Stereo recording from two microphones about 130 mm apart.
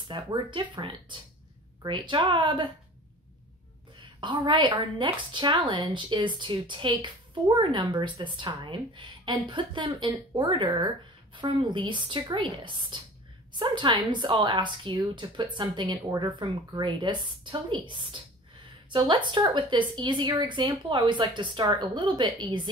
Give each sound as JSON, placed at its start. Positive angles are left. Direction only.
{"t": 0.1, "sound": "a woman's voice", "side_deg": -35}
{"t": 4.2, "sound": "a woman's voice", "side_deg": -35}